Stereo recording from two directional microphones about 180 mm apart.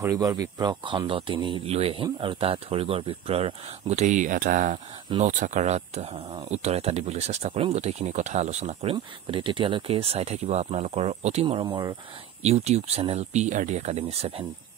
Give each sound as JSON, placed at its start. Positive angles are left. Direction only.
{"t": 0.0, "sound": "speech", "side_deg": -20}
{"t": 8.9, "sound": "speech", "side_deg": -30}
{"t": 11.4, "sound": "speech", "side_deg": -25}
{"t": 12.4, "sound": "speech", "side_deg": -35}